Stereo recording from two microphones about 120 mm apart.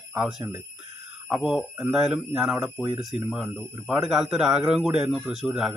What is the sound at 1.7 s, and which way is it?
Speech, 5° right (ahead or behind).